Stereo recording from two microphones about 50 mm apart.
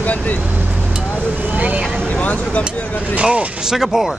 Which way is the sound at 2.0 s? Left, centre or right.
Centre.